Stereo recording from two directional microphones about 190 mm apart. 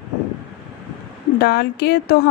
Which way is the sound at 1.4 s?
55° left (ahead or behind).